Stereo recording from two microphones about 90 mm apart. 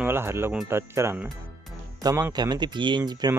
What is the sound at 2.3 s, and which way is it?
Speech, 50° right (ahead or behind).